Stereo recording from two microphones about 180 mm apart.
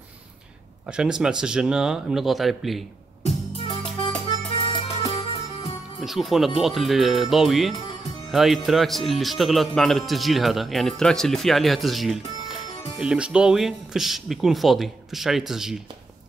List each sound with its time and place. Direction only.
0.8 s speech: 5° right (ahead or behind)
3.3 s music: 30° left (ahead or behind)
5.9 s speech: centre (ahead or behind)